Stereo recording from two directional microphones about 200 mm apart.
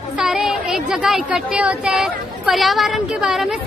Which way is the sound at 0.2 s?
Centre (ahead or behind).